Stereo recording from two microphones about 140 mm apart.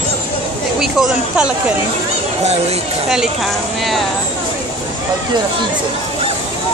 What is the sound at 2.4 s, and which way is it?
Speech, 50° right (ahead or behind).